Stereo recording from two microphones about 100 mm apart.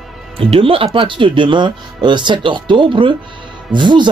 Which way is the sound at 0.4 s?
65° right (ahead or behind).